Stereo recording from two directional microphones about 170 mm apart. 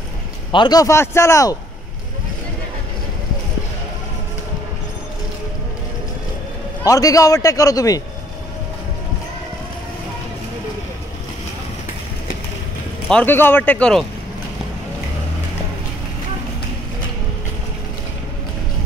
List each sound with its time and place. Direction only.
0.5 s a man's voice: 25° left (ahead or behind)
6.9 s a man's voice: 20° left (ahead or behind)
13.1 s speech: 10° left (ahead or behind)